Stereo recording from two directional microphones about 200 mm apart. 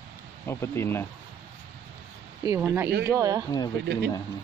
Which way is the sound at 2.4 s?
15° right (ahead or behind).